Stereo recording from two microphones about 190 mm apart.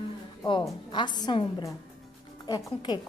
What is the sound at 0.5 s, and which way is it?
A woman's voice, 25° left (ahead or behind).